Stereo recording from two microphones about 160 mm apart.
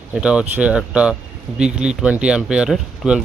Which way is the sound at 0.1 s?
5° right (ahead or behind).